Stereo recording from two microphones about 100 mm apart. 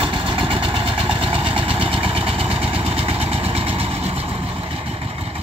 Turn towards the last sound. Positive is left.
turn(degrees=-75)  # may be behind; listen again after turning